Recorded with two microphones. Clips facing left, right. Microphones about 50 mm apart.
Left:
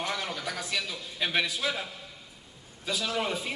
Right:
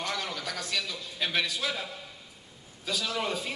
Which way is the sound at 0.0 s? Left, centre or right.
Centre.